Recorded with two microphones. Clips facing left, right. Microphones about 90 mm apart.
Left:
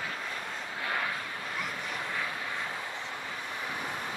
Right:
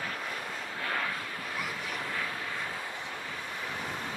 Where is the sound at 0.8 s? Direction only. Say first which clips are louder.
Even; 20° left (ahead or behind).